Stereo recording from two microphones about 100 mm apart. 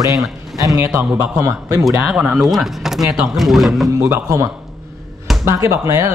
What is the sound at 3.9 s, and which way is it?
Speech, 25° right (ahead or behind).